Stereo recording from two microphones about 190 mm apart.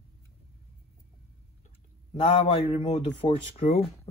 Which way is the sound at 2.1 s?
30° left (ahead or behind).